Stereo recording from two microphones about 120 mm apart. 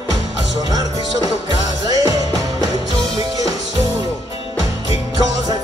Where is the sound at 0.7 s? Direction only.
30° right (ahead or behind).